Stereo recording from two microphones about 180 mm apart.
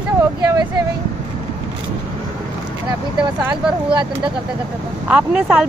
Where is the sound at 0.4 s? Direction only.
20° right (ahead or behind).